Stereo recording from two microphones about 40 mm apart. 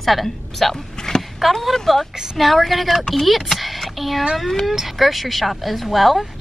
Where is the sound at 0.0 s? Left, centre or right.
Centre.